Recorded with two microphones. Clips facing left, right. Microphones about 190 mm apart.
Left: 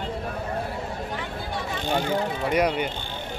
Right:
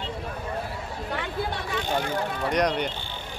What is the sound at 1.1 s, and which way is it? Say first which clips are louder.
Chatter: right 2 dB; 65° right (ahead or behind).